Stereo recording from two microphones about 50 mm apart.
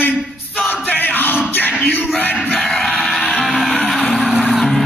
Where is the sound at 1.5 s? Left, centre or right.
Left.